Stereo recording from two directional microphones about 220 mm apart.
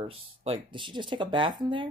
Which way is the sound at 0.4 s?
25° right (ahead or behind).